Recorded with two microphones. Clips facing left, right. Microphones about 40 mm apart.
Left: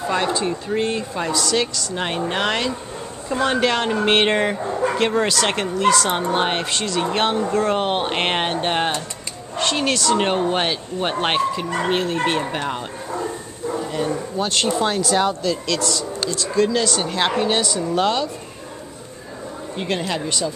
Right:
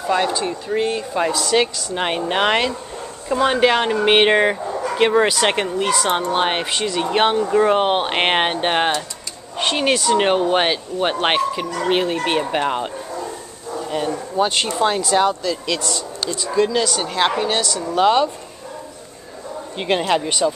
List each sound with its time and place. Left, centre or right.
0.1 s speech: centre
1.3 s speech: right
3.3 s speech: centre
15.8 s speech: right
16.5 s speech: centre
17.8 s speech: centre
19.8 s speech: right